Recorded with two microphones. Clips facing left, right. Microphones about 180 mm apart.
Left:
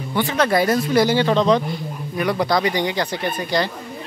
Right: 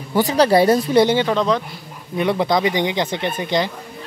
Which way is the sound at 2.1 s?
25° right (ahead or behind).